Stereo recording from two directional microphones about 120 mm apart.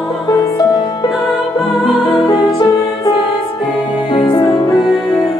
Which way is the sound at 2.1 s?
35° left (ahead or behind).